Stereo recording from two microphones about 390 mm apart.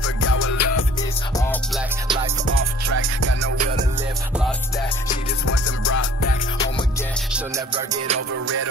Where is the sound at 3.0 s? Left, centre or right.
Right.